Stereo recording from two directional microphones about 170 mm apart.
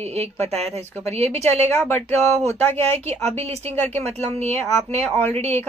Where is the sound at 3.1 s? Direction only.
40° right (ahead or behind).